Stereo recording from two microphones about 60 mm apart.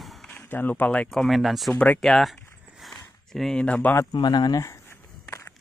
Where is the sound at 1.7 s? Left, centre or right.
Left.